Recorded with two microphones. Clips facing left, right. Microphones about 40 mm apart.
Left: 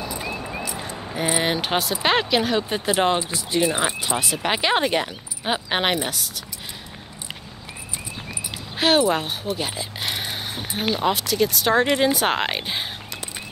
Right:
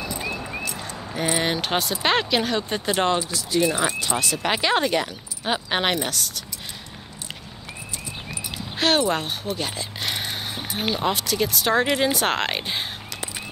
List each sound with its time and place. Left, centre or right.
0.2 s a sound: centre
0.7 s keys jangling: centre
2.0 s speech: centre
3.3 s speech: left; by 6.4 s centre
8.7 s speech: centre